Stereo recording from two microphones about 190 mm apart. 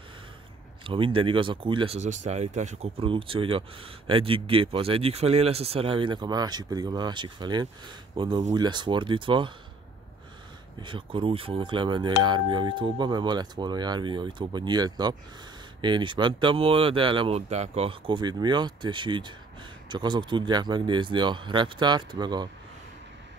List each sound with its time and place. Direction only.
0.8 s speech: 25° right (ahead or behind)
2.0 s speech: 40° right (ahead or behind)
10.8 s speech: 25° right (ahead or behind)